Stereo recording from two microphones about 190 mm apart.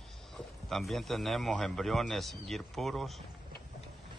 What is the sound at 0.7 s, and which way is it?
A man's voice, centre (ahead or behind).